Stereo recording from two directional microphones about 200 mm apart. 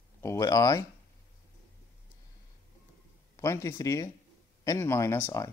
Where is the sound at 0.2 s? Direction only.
15° left (ahead or behind).